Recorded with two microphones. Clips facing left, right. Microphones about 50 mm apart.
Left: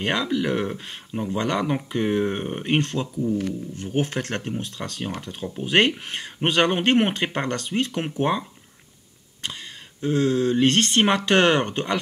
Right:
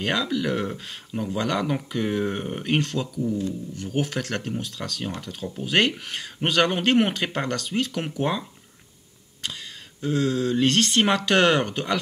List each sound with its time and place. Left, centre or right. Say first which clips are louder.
0.0 s speech: left 1 dB; centre
10.0 s speech: left 3 dB; centre